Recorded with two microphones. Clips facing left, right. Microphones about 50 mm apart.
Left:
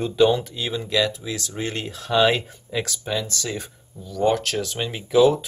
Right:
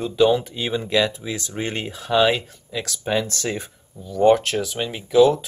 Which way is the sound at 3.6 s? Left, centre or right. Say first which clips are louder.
Right 1 dB; centre.